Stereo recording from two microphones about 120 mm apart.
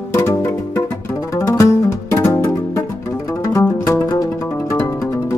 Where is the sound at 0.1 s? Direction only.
25° left (ahead or behind).